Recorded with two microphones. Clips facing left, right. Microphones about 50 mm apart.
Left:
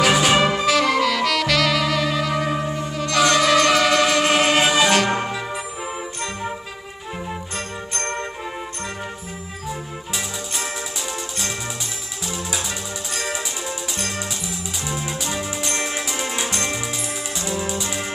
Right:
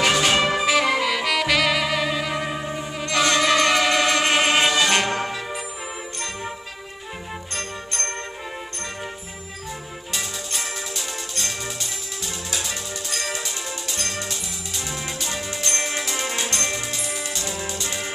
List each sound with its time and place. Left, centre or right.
0.0 s music: centre
0.6 s saxophone: centre
3.2 s music: centre
6.1 s music: centre
8.0 s music: centre
9.7 s music: centre
13.2 s music: centre